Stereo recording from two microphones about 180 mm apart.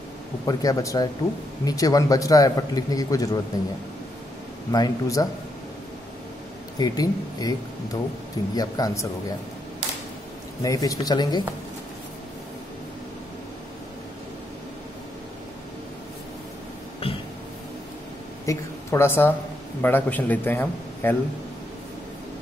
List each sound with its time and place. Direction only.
0.5 s a man's voice: 20° left (ahead or behind)
4.7 s a man's voice: 20° left (ahead or behind)
6.8 s a man's voice: 20° left (ahead or behind)
10.6 s a man's voice: 20° left (ahead or behind)
18.4 s speech: 15° left (ahead or behind)